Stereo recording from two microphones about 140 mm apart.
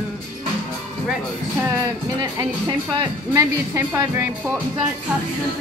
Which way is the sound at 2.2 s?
25° right (ahead or behind).